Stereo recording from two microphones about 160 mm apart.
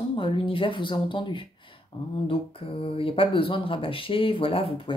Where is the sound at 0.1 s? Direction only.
30° left (ahead or behind).